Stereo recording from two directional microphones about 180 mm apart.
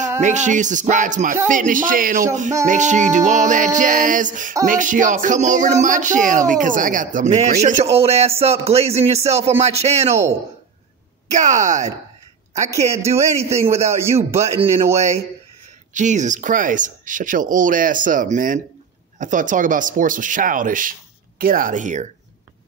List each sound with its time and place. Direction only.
0.2 s speech: 40° right (ahead or behind)
7.9 s a sound: 35° right (ahead or behind)
10.0 s a man's voice: 15° right (ahead or behind)
11.2 s a woman's voice: 45° right (ahead or behind)
12.9 s a man's voice: 15° right (ahead or behind)
15.9 s speech: 40° right (ahead or behind)